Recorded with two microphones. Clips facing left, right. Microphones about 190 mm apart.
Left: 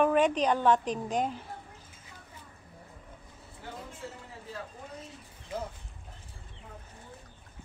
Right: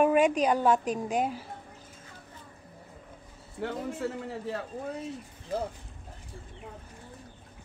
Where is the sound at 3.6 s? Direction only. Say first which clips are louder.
Right 11 dB; 70° right (ahead or behind).